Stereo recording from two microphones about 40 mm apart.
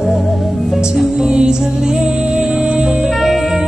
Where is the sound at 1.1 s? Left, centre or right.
Right.